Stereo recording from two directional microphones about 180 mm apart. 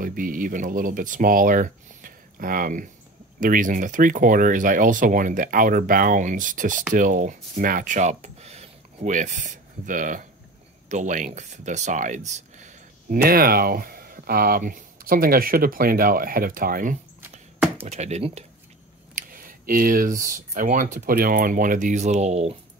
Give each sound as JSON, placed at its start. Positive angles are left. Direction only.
{"t": 0.0, "sound": "speech", "side_deg": -50}
{"t": 17.2, "sound": "chopping", "side_deg": -10}
{"t": 17.8, "sound": "speech", "side_deg": -40}
{"t": 19.1, "sound": "a sound", "side_deg": -50}
{"t": 20.2, "sound": "speech", "side_deg": -45}